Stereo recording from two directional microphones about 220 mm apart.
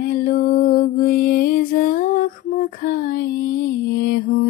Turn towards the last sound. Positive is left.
turn(degrees=45)  # may be behind; listen again after turning